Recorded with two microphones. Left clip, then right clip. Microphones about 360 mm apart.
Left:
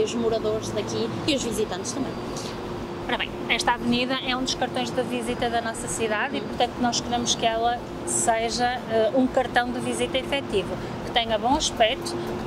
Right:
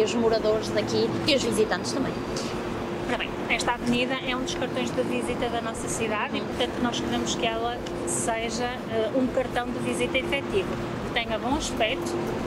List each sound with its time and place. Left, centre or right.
0.0 s speech: right
3.1 s speech: left
6.0 s speech: left
8.3 s speech: left
11.8 s speech: left